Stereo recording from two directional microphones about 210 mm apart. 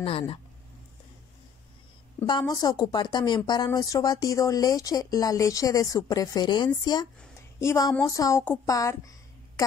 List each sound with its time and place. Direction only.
0.0 s speech: 25° left (ahead or behind)
2.1 s speech: 20° left (ahead or behind)